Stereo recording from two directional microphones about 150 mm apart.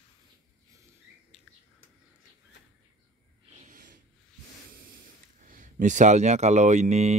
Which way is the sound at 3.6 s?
70° right (ahead or behind).